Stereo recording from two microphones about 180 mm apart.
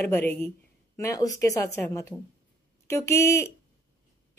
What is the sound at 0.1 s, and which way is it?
A woman's voice, 10° left (ahead or behind).